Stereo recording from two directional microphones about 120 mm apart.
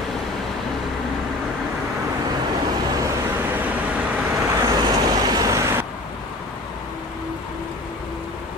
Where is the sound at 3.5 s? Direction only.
15° right (ahead or behind).